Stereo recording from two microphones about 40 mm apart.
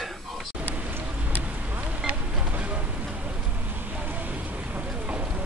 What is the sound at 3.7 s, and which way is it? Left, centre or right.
Vehicle, right.